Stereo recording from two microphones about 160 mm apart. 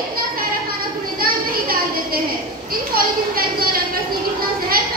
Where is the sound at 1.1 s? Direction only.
65° right (ahead or behind).